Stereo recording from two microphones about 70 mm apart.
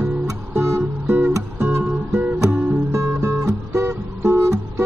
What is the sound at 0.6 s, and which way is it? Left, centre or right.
Music, right.